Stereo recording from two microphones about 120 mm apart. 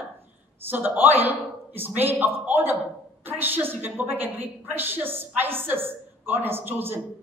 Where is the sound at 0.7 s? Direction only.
15° right (ahead or behind).